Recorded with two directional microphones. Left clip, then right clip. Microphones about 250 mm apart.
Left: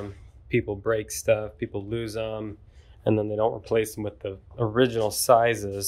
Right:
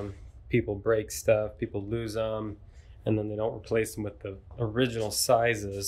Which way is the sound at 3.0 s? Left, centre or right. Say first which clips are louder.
Left 6 dB; centre.